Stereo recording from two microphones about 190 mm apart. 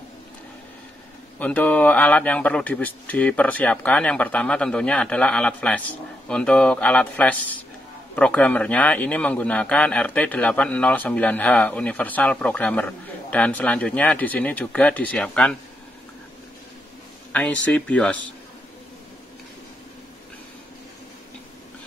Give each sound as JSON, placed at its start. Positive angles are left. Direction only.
{"t": 1.4, "sound": "a man's voice", "side_deg": 5}
{"t": 17.3, "sound": "a man's voice", "side_deg": 10}